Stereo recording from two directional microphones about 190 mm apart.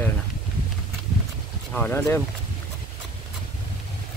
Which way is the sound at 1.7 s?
10° left (ahead or behind).